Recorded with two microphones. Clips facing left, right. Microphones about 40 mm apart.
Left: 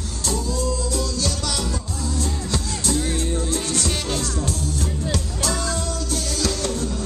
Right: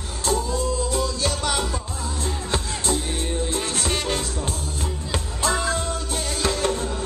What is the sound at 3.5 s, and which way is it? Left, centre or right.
Music, right.